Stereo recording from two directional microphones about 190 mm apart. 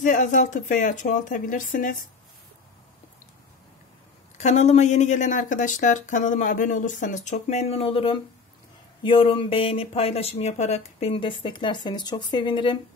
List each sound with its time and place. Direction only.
0.0 s speech: 40° left (ahead or behind)
4.4 s speech: 35° left (ahead or behind)